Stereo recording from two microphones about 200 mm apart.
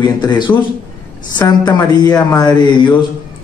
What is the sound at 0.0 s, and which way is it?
A man's voice, 20° left (ahead or behind).